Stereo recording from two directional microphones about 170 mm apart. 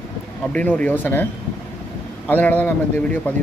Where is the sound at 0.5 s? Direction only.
10° left (ahead or behind).